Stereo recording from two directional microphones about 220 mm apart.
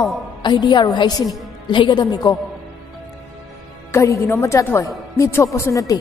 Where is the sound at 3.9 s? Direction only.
15° left (ahead or behind).